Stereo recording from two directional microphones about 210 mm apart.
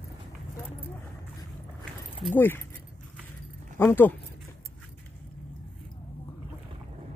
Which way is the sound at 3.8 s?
10° left (ahead or behind).